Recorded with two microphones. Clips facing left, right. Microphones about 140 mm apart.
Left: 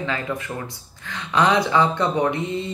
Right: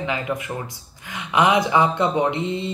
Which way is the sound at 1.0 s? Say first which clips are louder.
Right 1 dB; 20° right (ahead or behind).